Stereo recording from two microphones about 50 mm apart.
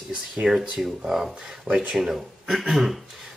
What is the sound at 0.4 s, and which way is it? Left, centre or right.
Speech, centre.